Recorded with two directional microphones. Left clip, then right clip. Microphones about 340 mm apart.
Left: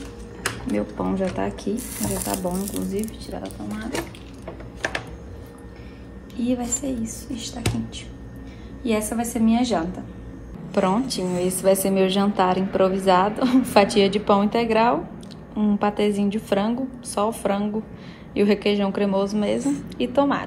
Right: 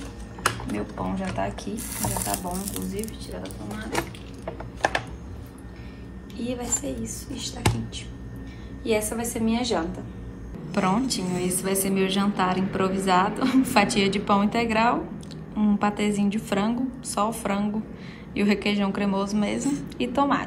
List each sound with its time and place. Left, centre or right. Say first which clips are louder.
0.5 s speech: left 3 dB; centre
6.3 s a woman's voice: left 4 dB; centre